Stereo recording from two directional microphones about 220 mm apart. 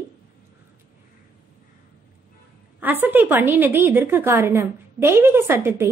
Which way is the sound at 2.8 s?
10° right (ahead or behind).